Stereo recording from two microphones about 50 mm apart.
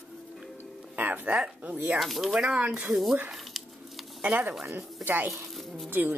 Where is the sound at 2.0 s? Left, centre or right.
Centre.